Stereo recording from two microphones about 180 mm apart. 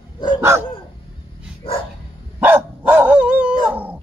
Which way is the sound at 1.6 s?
30° left (ahead or behind).